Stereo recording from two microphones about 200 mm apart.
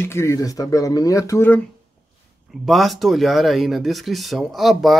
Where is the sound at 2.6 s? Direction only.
Centre (ahead or behind).